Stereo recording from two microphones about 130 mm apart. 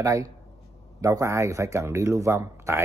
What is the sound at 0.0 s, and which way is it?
Speech, 25° right (ahead or behind).